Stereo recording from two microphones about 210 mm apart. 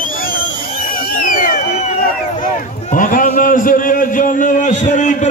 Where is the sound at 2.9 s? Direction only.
40° left (ahead or behind).